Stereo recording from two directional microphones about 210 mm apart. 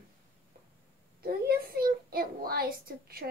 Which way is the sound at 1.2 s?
45° right (ahead or behind).